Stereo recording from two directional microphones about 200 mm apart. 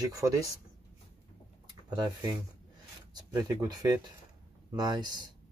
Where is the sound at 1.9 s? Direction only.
20° right (ahead or behind).